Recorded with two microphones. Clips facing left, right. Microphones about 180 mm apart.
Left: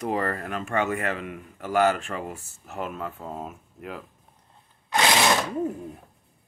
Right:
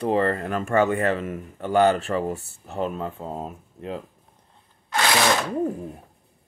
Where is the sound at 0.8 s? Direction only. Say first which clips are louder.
Right 5 dB; 35° right (ahead or behind).